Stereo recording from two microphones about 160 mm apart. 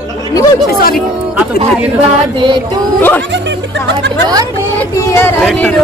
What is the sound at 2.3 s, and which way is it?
Child singing, 30° right (ahead or behind).